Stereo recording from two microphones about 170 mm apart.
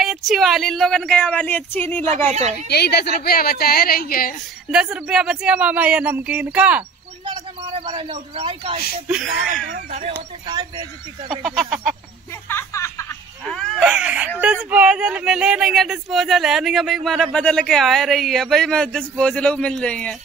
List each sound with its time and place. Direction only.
0.0 s speech: centre (ahead or behind)
2.7 s a woman's voice: 70° left (ahead or behind)
4.6 s speech: 5° right (ahead or behind)
7.8 s a man's voice: 35° right (ahead or behind)
9.0 s speech: 5° right (ahead or behind)
9.8 s speech: 45° right (ahead or behind)
10.4 s speech: 25° right (ahead or behind)
11.2 s speech: centre (ahead or behind)
12.4 s a sound: 15° left (ahead or behind)
13.5 s a sound: centre (ahead or behind)
14.4 s speech: 10° right (ahead or behind)